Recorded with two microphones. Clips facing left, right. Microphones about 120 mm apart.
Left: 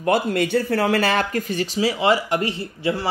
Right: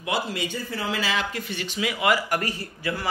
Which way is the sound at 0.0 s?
55° left (ahead or behind).